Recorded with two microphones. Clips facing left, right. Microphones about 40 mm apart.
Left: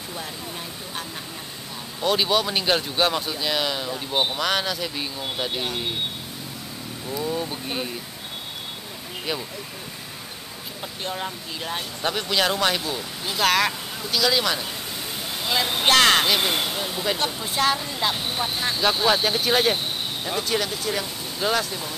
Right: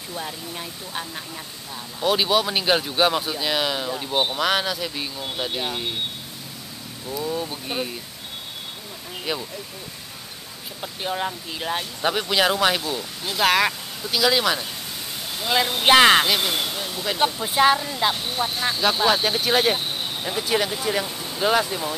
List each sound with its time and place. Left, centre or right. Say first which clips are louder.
2.0 s speech: right 1 dB; centre
7.1 s speech: even; centre
9.3 s speech: right 1 dB; centre
10.8 s speech: right 4 dB; centre
15.8 s speech: right 3 dB; centre
16.3 s speech: left 1 dB; centre
17.2 s speech: right 9 dB; centre
17.7 s speech: right 2 dB; centre